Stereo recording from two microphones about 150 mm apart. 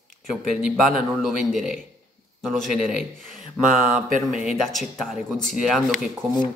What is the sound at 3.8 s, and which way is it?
Speech, 65° right (ahead or behind).